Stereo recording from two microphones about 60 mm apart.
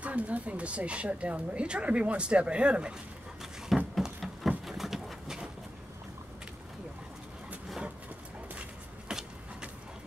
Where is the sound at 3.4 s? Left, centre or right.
Centre.